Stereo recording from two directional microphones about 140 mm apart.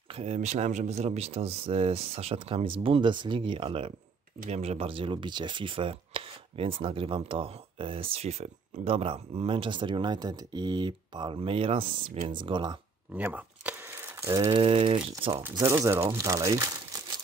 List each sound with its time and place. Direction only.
0.1 s speech: 50° right (ahead or behind); by 12.7 s 35° right (ahead or behind)
13.1 s camera: 10° right (ahead or behind)
14.5 s speech: 40° right (ahead or behind)
15.3 s speech: 20° right (ahead or behind)